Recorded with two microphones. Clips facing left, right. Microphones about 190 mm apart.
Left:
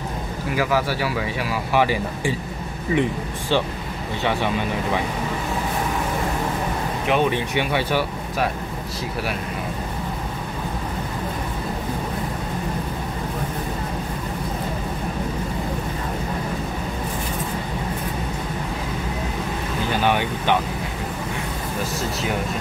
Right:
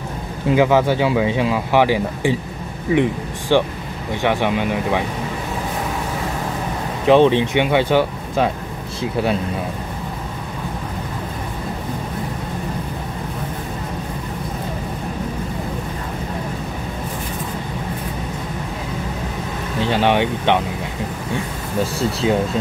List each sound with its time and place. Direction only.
0.5 s speech: 25° right (ahead or behind)
7.1 s speech: 30° right (ahead or behind)
19.9 s speech: 25° right (ahead or behind)